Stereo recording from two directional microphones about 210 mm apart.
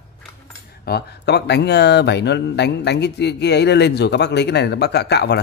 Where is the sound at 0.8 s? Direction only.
50° left (ahead or behind).